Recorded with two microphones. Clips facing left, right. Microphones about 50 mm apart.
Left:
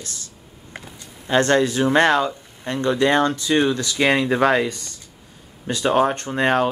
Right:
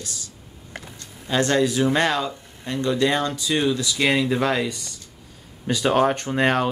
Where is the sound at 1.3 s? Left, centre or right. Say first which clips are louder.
Left 3 dB; left.